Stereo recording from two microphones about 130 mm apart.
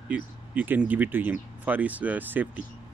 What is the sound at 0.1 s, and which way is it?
Speech, 10° right (ahead or behind).